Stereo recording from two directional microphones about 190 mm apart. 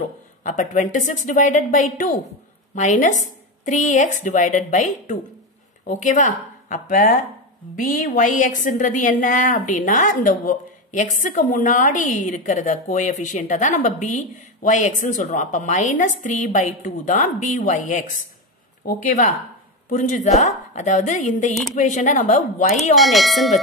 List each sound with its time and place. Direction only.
0.4 s a woman's voice: 40° left (ahead or behind)
22.9 s speech: centre (ahead or behind)